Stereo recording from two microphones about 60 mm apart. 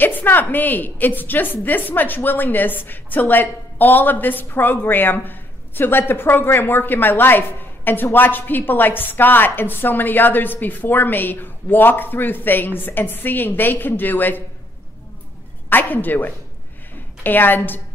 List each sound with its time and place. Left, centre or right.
0.0 s a woman's voice: left
15.7 s a woman's voice: left